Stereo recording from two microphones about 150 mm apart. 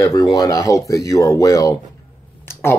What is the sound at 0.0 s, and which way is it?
Speech, 25° left (ahead or behind).